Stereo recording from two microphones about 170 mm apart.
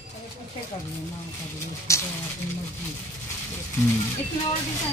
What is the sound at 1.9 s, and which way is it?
Speech, 15° left (ahead or behind).